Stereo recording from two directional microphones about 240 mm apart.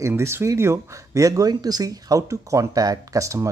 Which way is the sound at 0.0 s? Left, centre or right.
Centre.